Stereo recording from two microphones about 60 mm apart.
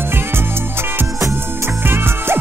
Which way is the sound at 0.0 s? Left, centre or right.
Right.